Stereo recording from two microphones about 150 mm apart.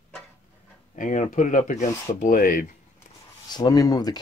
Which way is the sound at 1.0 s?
55° left (ahead or behind).